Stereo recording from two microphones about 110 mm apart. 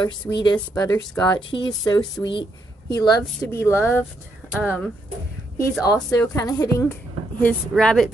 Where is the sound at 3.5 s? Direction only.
25° left (ahead or behind).